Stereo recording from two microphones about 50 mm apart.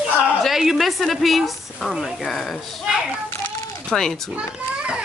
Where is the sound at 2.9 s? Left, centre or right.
Centre.